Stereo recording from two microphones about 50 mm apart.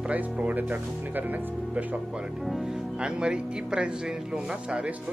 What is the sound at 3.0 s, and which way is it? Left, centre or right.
Speech, centre.